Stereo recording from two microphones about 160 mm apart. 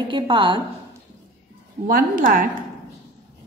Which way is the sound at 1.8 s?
60° right (ahead or behind).